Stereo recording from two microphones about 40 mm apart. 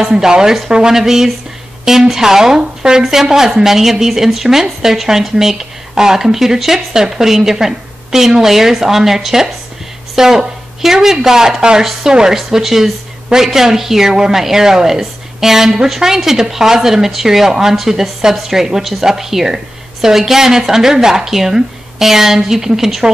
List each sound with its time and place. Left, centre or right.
0.1 s speech: centre
0.9 s speech: centre
12.4 s speech: centre